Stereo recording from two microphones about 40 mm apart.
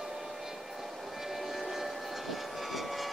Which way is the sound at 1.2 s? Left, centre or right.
Centre.